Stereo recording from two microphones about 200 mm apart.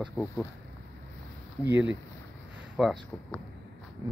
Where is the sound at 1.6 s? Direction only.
10° right (ahead or behind).